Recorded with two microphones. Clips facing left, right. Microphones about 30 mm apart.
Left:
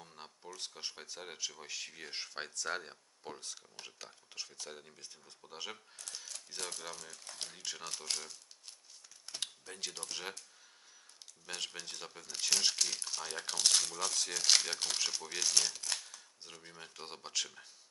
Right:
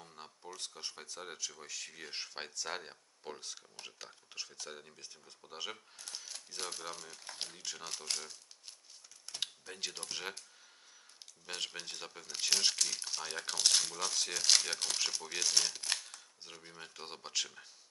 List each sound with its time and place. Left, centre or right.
0.0 s a sound: centre
0.6 s speech: centre
2.0 s speech: centre
11.4 s speech: centre
13.0 s speech: centre
15.8 s a sound: right
16.4 s speech: centre